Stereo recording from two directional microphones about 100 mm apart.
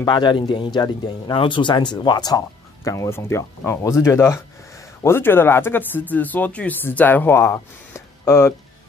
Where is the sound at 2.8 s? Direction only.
30° left (ahead or behind).